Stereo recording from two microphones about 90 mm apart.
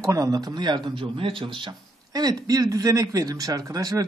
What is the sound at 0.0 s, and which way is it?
Speech, 40° right (ahead or behind).